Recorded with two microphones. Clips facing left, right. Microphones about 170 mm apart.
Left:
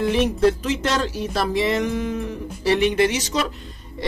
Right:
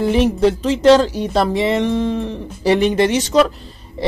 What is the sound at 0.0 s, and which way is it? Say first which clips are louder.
Speech: right 4 dB; 30° right (ahead or behind).